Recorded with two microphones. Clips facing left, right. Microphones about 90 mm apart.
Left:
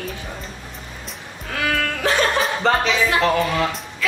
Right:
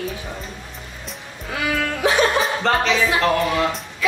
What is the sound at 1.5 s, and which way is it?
Music, 10° right (ahead or behind).